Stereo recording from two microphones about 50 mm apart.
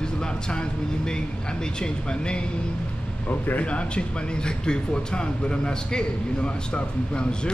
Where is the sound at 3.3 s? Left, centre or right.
Left.